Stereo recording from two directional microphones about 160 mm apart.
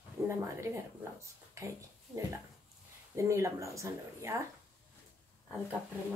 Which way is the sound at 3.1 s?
20° right (ahead or behind).